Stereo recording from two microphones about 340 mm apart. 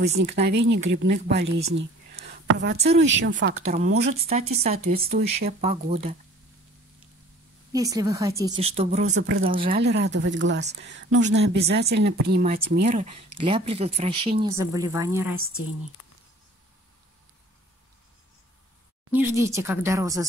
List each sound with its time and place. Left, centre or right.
0.0 s speech: right
1.8 s whispering: right
2.5 s speech: right
4.3 s speech: centre
7.7 s speech: centre
9.1 s speech: right
9.4 s speech: right
19.1 s speech: centre